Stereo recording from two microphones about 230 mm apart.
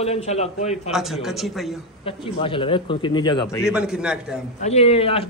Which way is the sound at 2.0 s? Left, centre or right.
Left.